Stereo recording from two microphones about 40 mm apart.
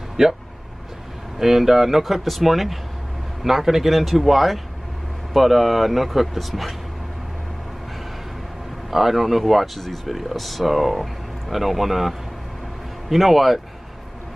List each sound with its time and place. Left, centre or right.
0.2 s speech: centre
1.4 s speech: centre
8.9 s speech: centre